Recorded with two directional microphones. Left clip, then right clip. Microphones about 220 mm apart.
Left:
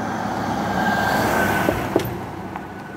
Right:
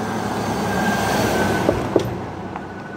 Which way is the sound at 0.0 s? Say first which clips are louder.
Right 1 dB; 35° right (ahead or behind).